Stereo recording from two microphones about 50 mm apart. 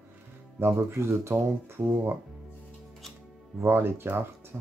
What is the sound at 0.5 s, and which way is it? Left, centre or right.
Speech, right.